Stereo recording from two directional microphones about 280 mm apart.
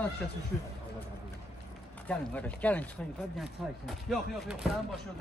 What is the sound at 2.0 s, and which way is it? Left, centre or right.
A man's voice, centre.